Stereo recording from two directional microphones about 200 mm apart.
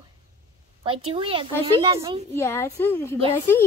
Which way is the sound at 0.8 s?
25° right (ahead or behind).